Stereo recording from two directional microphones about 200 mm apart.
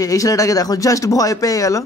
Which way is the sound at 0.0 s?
15° left (ahead or behind).